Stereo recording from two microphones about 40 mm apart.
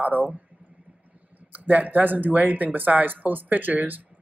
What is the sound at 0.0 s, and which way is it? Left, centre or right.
Speech, right.